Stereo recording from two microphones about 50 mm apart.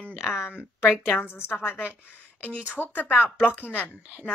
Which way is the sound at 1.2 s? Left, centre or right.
Left.